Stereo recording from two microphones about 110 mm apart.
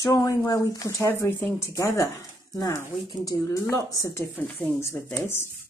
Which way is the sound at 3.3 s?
30° left (ahead or behind).